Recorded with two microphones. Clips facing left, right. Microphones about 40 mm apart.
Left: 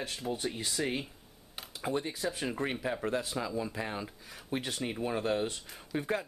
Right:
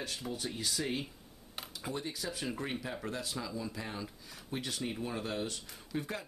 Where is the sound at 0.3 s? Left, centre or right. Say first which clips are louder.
Left 4 dB; left.